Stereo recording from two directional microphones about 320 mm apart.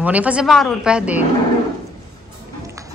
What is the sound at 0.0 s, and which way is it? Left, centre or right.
Speech, centre.